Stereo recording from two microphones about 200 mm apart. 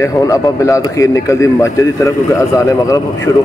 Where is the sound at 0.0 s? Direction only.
15° left (ahead or behind).